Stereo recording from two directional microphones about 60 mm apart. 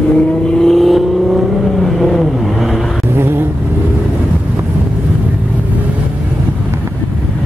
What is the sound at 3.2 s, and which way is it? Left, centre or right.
Vehicle, right.